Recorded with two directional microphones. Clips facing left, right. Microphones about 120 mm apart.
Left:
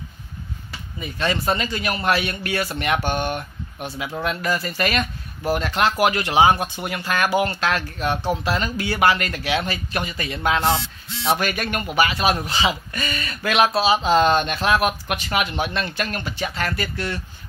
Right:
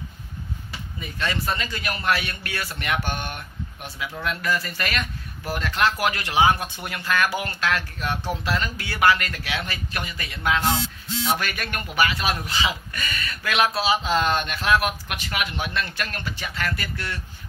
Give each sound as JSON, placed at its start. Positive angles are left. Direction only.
{"t": 1.1, "sound": "a man's voice", "side_deg": 25}